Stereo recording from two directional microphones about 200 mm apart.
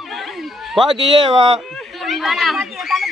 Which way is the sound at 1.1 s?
20° right (ahead or behind).